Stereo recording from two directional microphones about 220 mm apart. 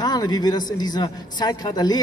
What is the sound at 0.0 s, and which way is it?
Speech, 20° left (ahead or behind).